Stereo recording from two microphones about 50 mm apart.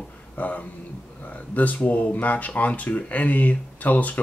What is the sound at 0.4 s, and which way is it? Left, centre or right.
Speech, left.